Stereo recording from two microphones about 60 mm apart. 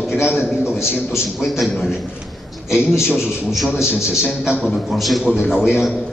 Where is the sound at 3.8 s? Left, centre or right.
Left.